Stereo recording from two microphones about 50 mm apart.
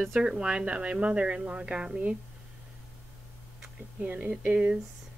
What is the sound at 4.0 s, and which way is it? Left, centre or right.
Speech, right.